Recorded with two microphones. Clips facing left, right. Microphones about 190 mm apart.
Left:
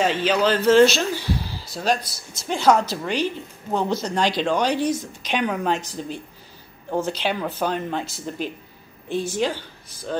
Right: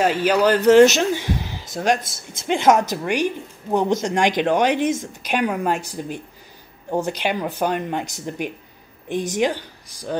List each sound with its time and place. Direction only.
0.0 s a woman's voice: 10° right (ahead or behind)